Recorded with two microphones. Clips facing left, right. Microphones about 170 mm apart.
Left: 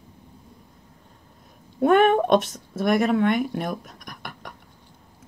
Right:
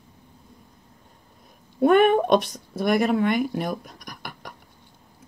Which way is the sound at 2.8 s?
Centre (ahead or behind).